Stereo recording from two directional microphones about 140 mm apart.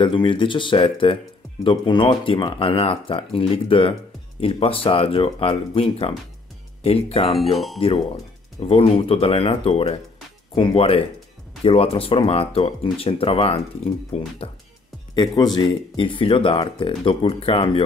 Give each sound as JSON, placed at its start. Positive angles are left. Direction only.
{"t": 0.0, "sound": "speech", "side_deg": 35}
{"t": 7.3, "sound": "speech", "side_deg": 0}
{"t": 8.5, "sound": "speech", "side_deg": 45}
{"t": 15.1, "sound": "speech", "side_deg": 30}